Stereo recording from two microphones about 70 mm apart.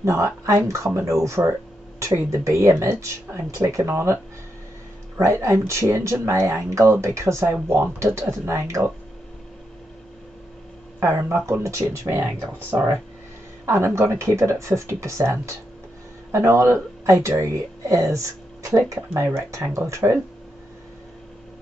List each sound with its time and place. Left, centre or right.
0.0 s speech: right
1.4 s speech: right
2.0 s speech: right
11.0 s speech: right
13.7 s speech: right